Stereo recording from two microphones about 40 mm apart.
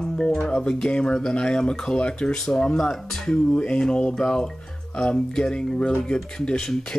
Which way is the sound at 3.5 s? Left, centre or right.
Left.